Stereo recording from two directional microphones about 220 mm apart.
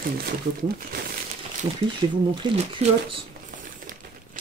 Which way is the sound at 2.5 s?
25° right (ahead or behind).